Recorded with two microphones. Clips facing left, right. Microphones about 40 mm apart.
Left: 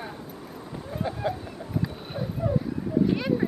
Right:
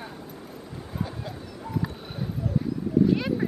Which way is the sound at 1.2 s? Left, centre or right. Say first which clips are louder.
Left 9 dB; left.